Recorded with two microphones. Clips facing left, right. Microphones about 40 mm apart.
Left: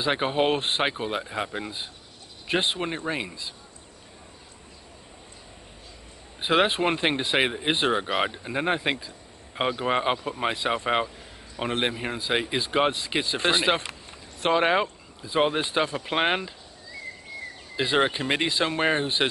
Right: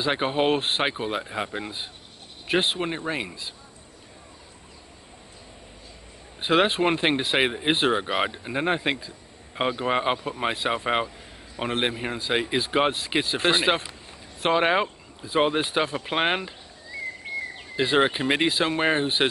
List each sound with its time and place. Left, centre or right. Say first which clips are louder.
0.0 s speech: even; centre
6.4 s speech: right 1 dB; centre
17.3 s a sound: right 8 dB; right
17.7 s speech: right 2 dB; centre